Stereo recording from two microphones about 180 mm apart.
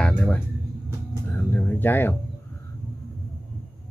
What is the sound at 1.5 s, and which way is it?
Music, 10° left (ahead or behind).